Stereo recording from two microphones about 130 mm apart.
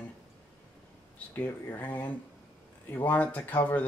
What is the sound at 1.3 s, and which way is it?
Speech, 15° left (ahead or behind).